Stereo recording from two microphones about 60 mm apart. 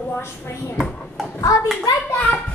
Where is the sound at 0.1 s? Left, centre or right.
Left.